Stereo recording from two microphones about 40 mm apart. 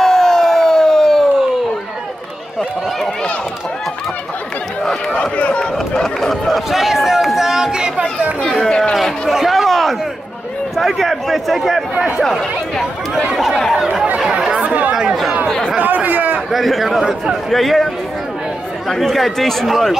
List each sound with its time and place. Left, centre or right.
0.0 s siren: centre
5.1 s a sound: left
6.0 s chatter: centre
6.7 s chatter: centre
8.6 s a sound: centre
8.9 s a sound: centre
10.8 s a man's voice: centre
14.4 s chatter: right
15.8 s chatter: right
16.5 s speech: centre
18.9 s speech: centre